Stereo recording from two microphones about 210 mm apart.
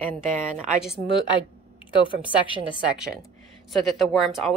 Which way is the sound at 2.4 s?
25° left (ahead or behind).